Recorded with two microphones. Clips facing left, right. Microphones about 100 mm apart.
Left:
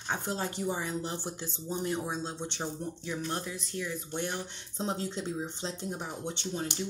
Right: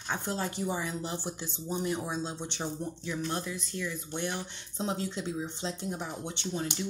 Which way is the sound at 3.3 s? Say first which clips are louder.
Right 1 dB; 20° left (ahead or behind).